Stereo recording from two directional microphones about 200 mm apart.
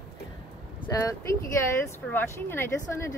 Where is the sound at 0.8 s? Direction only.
15° left (ahead or behind).